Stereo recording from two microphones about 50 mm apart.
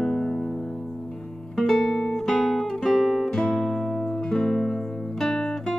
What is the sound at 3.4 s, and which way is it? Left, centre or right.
Music, centre.